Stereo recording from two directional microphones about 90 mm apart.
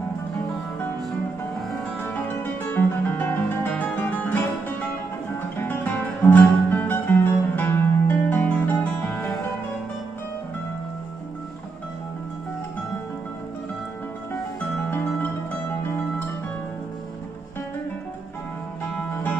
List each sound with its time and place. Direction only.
2.0 s music: 20° left (ahead or behind)